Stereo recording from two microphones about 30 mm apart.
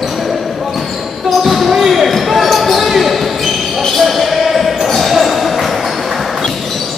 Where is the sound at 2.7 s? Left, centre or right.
Centre.